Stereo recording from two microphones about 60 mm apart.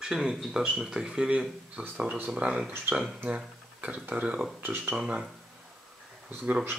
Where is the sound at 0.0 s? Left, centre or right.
Centre.